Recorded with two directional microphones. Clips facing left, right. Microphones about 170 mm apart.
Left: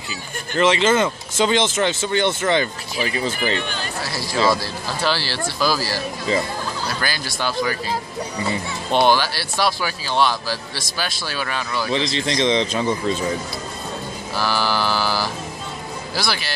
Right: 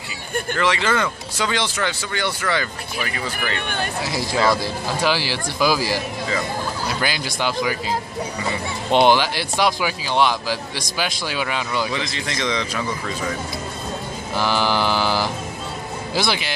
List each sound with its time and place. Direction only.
0.6 s speech: 20° left (ahead or behind)
3.3 s speech: 55° right (ahead or behind)
4.0 s speech: 20° right (ahead or behind)
8.9 s speech: 20° right (ahead or behind)
11.9 s speech: 25° left (ahead or behind)
14.3 s mantra: 20° right (ahead or behind)